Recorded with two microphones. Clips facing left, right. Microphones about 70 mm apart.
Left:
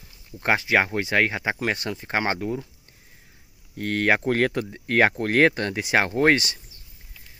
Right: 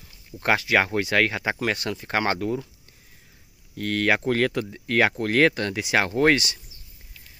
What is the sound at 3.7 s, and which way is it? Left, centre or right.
Speech, left.